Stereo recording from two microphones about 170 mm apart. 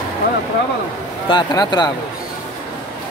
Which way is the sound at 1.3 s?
25° left (ahead or behind).